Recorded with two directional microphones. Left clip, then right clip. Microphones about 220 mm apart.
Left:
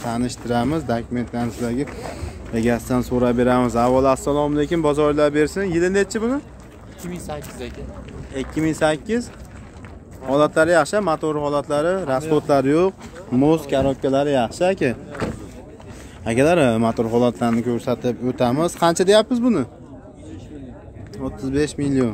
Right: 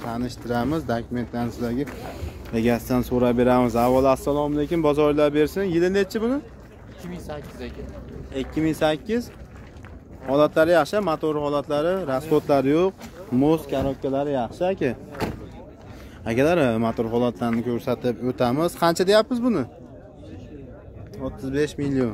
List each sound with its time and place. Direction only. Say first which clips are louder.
0.0 s speech: left 5 dB; 15° left (ahead or behind); by 6.4 s centre (ahead or behind)
7.1 s speech: left 4 dB; 35° left (ahead or behind)
8.4 s speech: left 2 dB; centre (ahead or behind)
13.7 s speech: left 6 dB; 20° left (ahead or behind)
15.2 s vehicle: left 2 dB; 50° right (ahead or behind)
16.3 s speech: left 4 dB; 5° left (ahead or behind)
21.2 s speech: left 3 dB; centre (ahead or behind)